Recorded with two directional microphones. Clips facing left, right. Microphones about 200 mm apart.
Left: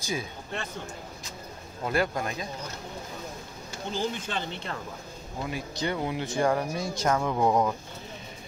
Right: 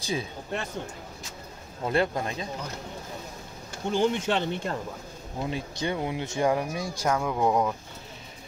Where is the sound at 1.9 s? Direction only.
30° right (ahead or behind).